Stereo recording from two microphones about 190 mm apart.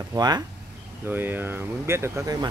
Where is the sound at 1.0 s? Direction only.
10° right (ahead or behind).